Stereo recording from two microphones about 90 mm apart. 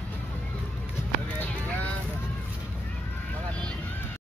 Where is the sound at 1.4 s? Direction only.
15° left (ahead or behind).